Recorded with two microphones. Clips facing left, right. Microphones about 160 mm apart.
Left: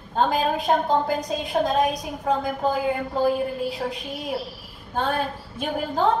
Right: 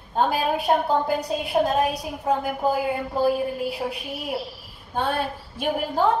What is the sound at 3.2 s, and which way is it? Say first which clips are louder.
Speech: right 1 dB; 25° left (ahead or behind).